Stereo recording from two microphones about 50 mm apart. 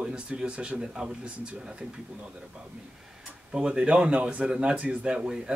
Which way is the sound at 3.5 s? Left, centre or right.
Right.